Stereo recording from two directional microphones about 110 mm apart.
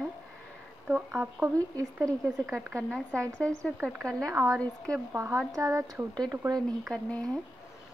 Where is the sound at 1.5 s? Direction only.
30° right (ahead or behind).